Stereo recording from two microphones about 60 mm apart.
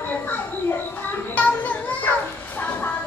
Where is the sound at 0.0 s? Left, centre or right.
Left.